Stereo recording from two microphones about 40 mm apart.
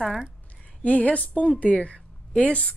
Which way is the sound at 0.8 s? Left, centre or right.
Left.